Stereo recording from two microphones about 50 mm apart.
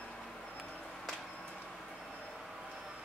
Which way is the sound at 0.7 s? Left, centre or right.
Left.